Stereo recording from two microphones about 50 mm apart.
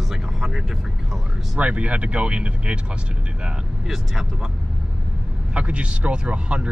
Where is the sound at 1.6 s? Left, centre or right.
Right.